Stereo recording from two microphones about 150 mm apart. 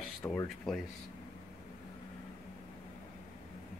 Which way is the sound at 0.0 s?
5° left (ahead or behind).